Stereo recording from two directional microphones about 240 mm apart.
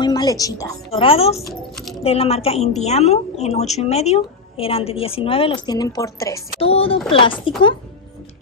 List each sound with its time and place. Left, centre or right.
0.0 s speech: centre
1.5 s keys jangling: centre
2.0 s a woman's voice: left
6.6 s a woman's voice: left